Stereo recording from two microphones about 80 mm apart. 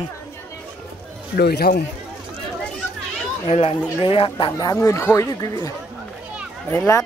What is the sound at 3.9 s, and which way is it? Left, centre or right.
Speech, left.